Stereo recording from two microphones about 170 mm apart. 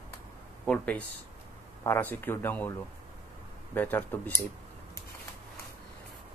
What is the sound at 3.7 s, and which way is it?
Speech, 10° left (ahead or behind).